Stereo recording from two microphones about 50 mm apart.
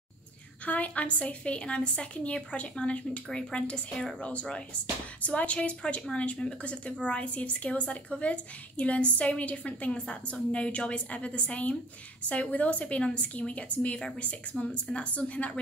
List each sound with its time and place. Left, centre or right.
0.7 s a woman's voice: left
13.9 s a woman's voice: centre